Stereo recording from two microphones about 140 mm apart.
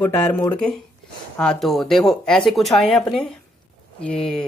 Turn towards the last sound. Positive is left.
turn(degrees=5)  # may be behind; listen again after turning